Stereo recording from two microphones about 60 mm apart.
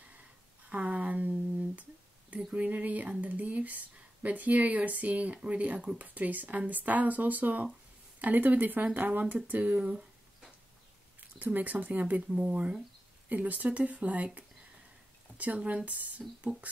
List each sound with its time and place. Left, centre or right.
0.7 s a sound: right
2.5 s speech: right
11.1 s speech: right